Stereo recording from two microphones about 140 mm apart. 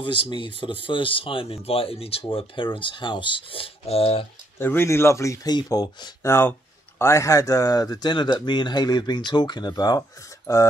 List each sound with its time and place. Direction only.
0.0 s speech: 35° left (ahead or behind)
4.6 s speech: 15° left (ahead or behind)
6.2 s speech: 20° left (ahead or behind)